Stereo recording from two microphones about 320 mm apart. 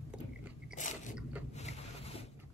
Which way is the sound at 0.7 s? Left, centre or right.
Left.